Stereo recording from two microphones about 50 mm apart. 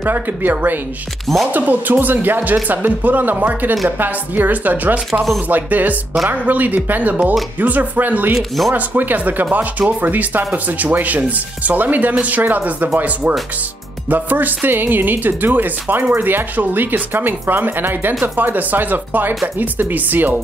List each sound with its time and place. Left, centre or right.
0.0 s speech: right
8.4 s speech: centre
8.7 s speech: right